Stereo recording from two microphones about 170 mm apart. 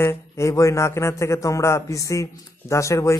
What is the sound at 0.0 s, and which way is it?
Speech, 15° left (ahead or behind).